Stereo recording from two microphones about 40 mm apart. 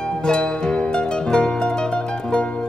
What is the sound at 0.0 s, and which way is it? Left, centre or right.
Music, centre.